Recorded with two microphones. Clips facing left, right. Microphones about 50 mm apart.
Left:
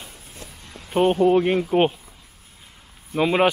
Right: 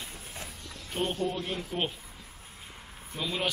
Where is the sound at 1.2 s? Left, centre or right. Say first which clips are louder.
Left 15 dB; left.